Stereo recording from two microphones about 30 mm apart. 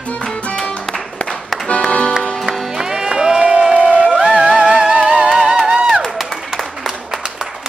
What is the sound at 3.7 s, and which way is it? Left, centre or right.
Music, right.